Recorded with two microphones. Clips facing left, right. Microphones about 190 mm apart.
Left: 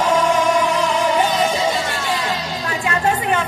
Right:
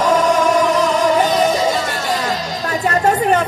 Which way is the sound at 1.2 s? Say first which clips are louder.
Right 3 dB; 40° right (ahead or behind).